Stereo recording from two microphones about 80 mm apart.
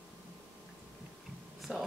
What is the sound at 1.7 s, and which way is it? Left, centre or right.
Speech, centre.